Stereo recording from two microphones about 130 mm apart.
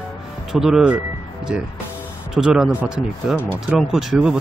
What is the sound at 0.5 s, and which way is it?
Speech, 5° right (ahead or behind).